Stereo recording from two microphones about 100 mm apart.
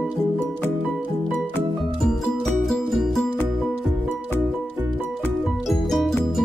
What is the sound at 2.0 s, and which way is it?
Music, 5° left (ahead or behind).